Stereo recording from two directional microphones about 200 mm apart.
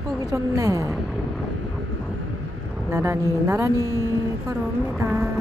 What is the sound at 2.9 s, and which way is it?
A woman's voice, 15° right (ahead or behind).